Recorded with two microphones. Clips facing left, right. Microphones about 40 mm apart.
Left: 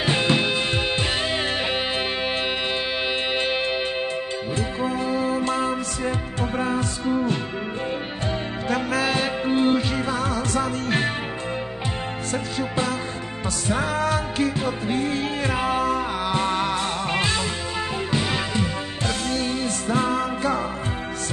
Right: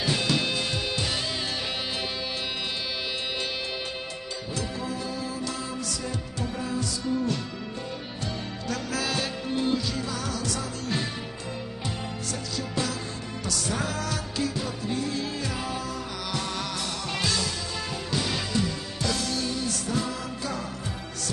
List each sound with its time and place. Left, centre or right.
0.0 s music: left
3.3 s music: left
8.6 s music: left
12.5 s music: left
19.0 s music: left